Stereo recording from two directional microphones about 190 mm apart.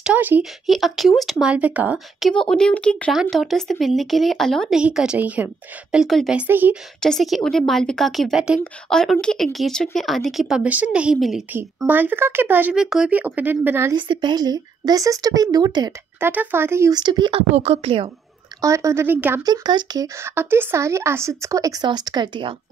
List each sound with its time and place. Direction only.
0.0 s speech: 10° right (ahead or behind)
7.0 s speech: centre (ahead or behind)
13.9 s speech: 25° right (ahead or behind)
16.3 s speech: 10° right (ahead or behind); by 18.1 s 30° right (ahead or behind)
18.6 s speech: 15° right (ahead or behind)